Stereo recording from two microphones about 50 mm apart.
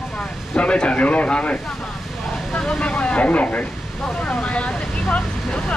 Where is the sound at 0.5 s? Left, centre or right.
Left.